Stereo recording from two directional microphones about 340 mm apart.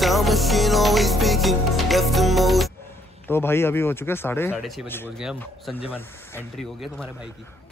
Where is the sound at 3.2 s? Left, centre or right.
Centre.